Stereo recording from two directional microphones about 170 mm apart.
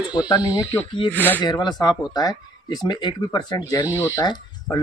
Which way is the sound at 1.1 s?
10° left (ahead or behind).